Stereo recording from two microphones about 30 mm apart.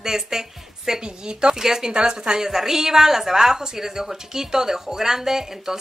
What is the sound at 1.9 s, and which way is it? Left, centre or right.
Speech, right.